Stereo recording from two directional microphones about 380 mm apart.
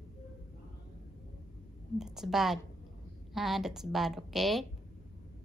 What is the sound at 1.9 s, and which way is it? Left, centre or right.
A woman's voice, centre.